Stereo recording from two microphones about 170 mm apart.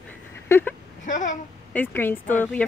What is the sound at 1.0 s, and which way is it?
Speech, 50° left (ahead or behind).